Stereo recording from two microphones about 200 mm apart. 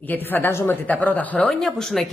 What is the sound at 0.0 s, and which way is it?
A woman's voice, 10° left (ahead or behind).